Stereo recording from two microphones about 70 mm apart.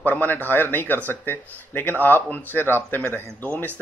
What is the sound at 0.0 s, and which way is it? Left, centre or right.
Speech, left.